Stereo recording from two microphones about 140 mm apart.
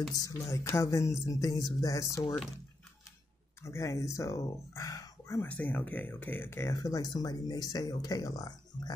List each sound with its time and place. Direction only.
0.1 s speech: 25° left (ahead or behind)
3.6 s speech: 20° left (ahead or behind)